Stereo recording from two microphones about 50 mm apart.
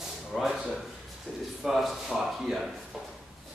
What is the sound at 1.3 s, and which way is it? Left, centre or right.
Speech, left.